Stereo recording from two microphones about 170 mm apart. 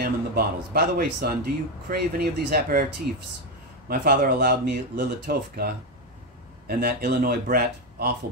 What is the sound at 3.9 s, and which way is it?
Speech, 60° right (ahead or behind).